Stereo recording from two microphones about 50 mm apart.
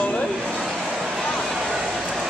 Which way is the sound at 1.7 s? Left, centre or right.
Centre.